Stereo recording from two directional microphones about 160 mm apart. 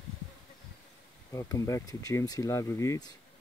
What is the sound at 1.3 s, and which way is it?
Speech, 20° left (ahead or behind).